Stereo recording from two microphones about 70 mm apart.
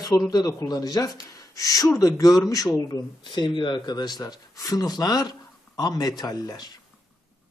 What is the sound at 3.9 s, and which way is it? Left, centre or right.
Speech, left.